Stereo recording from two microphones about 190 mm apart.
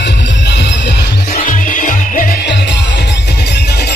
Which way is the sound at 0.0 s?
65° left (ahead or behind).